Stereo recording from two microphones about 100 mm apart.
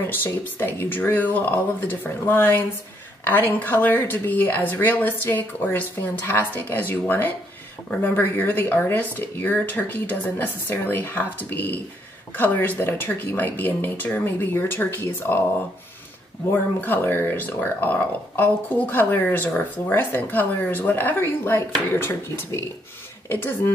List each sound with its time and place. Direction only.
0.0 s speech: 20° left (ahead or behind)
16.8 s speech: 20° left (ahead or behind)